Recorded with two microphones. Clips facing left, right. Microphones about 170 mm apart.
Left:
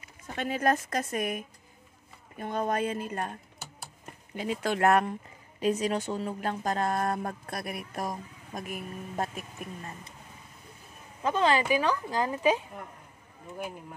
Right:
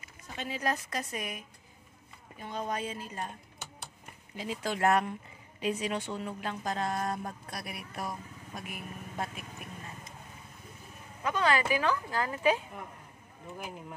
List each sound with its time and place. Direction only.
0.4 s speech: 55° left (ahead or behind)
4.4 s speech: 60° left (ahead or behind)
5.6 s speech: 40° left (ahead or behind)
11.2 s speech: 25° left (ahead or behind)